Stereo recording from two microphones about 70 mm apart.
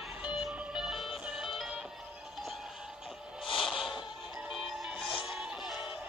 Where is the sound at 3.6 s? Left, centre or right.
Centre.